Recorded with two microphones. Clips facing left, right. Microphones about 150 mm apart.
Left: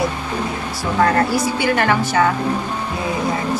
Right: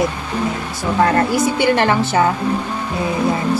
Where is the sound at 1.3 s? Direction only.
30° right (ahead or behind).